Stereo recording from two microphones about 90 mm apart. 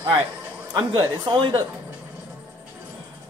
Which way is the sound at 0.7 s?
60° right (ahead or behind).